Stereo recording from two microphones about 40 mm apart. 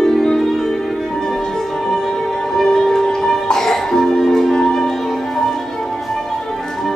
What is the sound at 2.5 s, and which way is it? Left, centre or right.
Music, centre.